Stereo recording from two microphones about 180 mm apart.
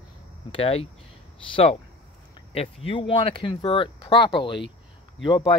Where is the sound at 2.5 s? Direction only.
30° left (ahead or behind).